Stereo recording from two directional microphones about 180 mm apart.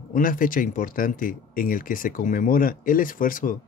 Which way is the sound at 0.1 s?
50° left (ahead or behind).